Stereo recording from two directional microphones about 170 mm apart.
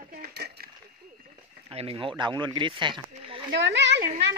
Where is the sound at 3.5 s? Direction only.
90° right.